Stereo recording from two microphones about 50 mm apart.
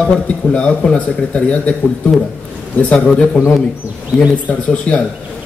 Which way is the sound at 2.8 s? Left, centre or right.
Left.